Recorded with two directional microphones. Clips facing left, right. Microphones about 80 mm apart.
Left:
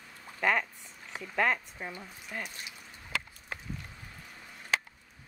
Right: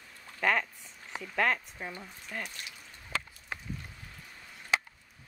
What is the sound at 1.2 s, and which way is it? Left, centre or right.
Speech, centre.